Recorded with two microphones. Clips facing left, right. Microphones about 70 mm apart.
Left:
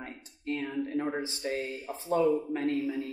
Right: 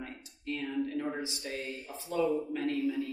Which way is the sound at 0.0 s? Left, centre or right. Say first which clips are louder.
Left 2 dB; left.